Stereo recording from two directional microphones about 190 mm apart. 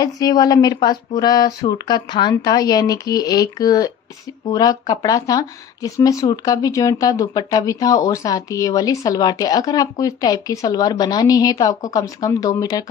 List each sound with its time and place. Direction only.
0.0 s speech: 20° left (ahead or behind)